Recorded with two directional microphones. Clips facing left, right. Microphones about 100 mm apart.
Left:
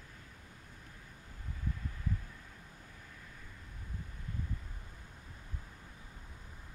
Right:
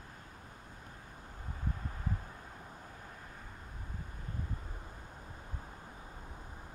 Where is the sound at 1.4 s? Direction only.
45° right (ahead or behind).